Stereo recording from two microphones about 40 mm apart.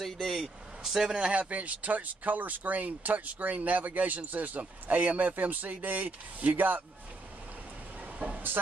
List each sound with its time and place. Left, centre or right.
0.0 s speech: centre
0.4 s speech: centre
1.3 s speech: right
8.0 s a sound: right